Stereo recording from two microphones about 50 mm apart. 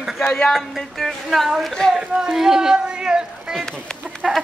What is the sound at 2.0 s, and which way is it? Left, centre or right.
Speech, centre.